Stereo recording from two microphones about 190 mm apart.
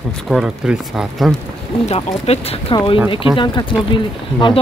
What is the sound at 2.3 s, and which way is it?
Speech, 35° left (ahead or behind).